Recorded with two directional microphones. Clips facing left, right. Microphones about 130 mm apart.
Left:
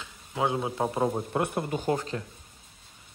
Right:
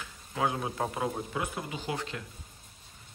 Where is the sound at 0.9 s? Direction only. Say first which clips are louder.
Left 6 dB; 30° left (ahead or behind).